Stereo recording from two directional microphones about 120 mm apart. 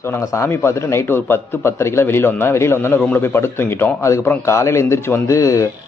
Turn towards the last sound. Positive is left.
turn(degrees=25)  # may be behind; listen again after turning